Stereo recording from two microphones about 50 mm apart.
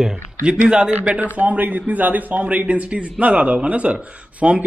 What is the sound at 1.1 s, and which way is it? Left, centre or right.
A man's voice, right.